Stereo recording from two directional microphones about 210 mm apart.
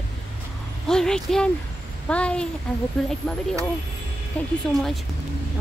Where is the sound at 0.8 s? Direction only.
5° left (ahead or behind).